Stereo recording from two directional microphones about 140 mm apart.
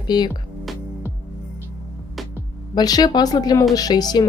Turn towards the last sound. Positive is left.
turn(degrees=30)  # may be behind; listen again after turning